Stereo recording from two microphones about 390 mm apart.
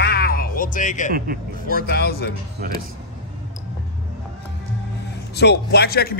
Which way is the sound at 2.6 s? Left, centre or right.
Right.